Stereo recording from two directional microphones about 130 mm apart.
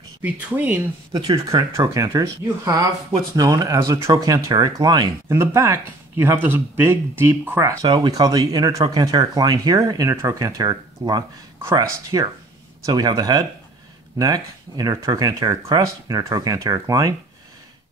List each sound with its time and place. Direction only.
0.2 s speech: 10° right (ahead or behind)
1.1 s speech: 40° right (ahead or behind)
1.5 s speech: 25° right (ahead or behind)
7.8 s speech: 35° right (ahead or behind)